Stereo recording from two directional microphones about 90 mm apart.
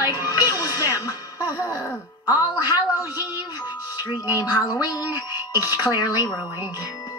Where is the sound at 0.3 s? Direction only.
45° left (ahead or behind).